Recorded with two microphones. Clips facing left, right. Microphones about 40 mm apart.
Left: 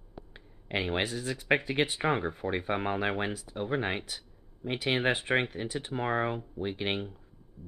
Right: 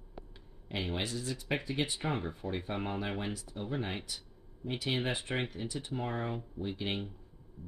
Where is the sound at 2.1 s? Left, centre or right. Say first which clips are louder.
Left 6 dB; left.